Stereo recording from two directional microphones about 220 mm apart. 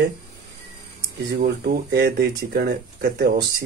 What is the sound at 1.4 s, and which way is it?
Speech, 45° right (ahead or behind).